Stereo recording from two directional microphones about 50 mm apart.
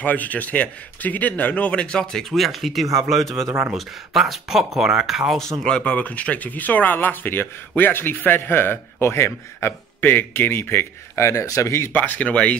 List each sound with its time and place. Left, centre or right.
0.0 s a man's voice: left; by 2.2 s centre
2.3 s speech: centre
5.4 s speech: centre
5.8 s speech: left
11.2 s speech: left
11.9 s speech: left